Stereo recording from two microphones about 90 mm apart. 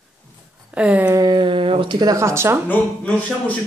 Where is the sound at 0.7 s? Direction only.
15° right (ahead or behind).